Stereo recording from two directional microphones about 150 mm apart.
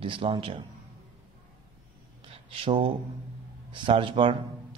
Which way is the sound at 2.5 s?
40° right (ahead or behind).